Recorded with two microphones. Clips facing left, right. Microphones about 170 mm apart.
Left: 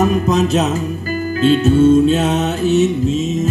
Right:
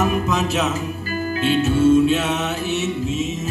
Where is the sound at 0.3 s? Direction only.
40° left (ahead or behind).